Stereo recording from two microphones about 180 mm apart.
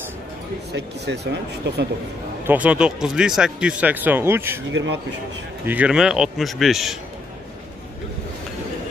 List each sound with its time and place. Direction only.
0.7 s speech: 70° right (ahead or behind)
2.4 s speech: 10° right (ahead or behind)
4.6 s a man's voice: 85° right
5.7 s a man's voice: 5° right (ahead or behind)